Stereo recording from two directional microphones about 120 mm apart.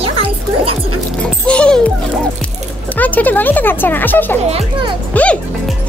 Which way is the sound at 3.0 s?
15° left (ahead or behind).